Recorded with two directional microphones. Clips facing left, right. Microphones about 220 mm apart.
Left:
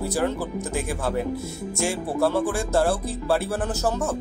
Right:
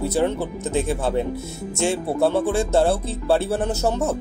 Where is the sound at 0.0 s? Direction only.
25° right (ahead or behind).